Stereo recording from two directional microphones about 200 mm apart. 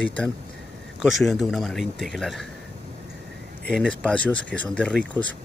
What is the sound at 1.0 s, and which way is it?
Speech, centre (ahead or behind).